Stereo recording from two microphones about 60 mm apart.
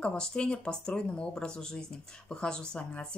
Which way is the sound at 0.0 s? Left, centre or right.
Centre.